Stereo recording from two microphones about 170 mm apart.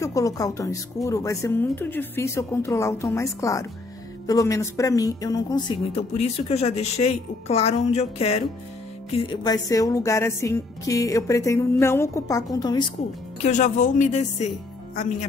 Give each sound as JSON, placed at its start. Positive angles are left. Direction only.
{"t": 0.0, "sound": "speech", "side_deg": 20}
{"t": 4.3, "sound": "music", "side_deg": 20}
{"t": 5.9, "sound": "a woman's voice", "side_deg": 35}
{"t": 9.1, "sound": "music", "side_deg": 25}
{"t": 13.4, "sound": "speech", "side_deg": 45}